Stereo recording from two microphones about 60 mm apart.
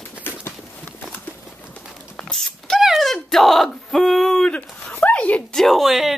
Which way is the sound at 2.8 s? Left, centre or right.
Centre.